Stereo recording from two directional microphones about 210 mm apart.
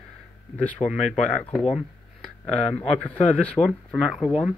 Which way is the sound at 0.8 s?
15° left (ahead or behind).